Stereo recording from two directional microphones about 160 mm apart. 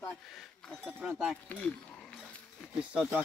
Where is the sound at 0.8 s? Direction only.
10° right (ahead or behind).